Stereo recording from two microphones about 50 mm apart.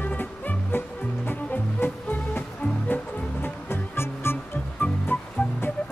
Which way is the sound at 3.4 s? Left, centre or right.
Left.